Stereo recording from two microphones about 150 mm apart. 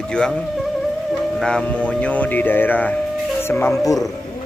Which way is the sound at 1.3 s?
5° left (ahead or behind).